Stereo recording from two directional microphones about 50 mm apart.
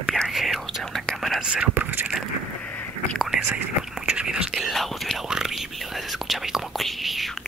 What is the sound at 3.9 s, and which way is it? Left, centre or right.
Whispering, centre.